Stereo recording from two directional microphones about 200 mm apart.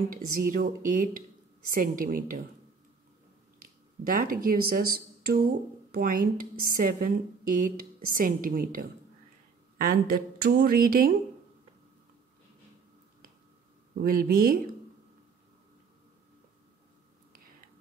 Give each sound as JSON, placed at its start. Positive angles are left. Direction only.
{"t": 0.1, "sound": "a woman's voice", "side_deg": -45}
{"t": 4.0, "sound": "a woman's voice", "side_deg": -45}
{"t": 14.0, "sound": "a woman's voice", "side_deg": -45}